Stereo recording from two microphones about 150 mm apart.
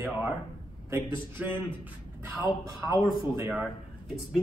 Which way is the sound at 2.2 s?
20° right (ahead or behind).